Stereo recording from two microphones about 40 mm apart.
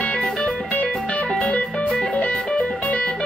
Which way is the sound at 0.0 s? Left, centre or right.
Left.